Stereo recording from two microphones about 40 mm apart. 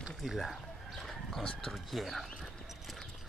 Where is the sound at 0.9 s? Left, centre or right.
Centre.